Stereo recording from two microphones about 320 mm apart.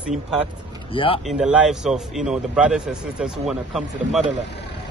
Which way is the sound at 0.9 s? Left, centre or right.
Centre.